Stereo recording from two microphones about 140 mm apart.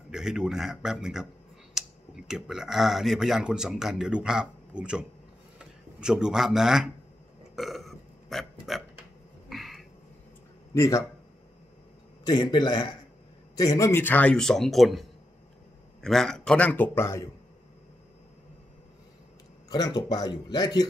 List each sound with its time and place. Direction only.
0.1 s speech: 5° right (ahead or behind)
7.5 s burping: centre (ahead or behind)
9.5 s a sound: centre (ahead or behind)
10.7 s speech: 20° left (ahead or behind)
12.3 s a man's voice: 35° left (ahead or behind)
19.7 s speech: 30° left (ahead or behind)